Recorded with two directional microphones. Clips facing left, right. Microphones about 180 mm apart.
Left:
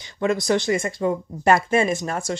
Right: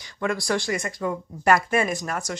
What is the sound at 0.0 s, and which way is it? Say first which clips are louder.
Speech: left 5 dB; 25° left (ahead or behind).